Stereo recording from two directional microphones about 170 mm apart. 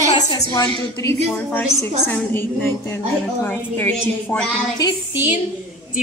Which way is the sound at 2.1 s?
10° left (ahead or behind).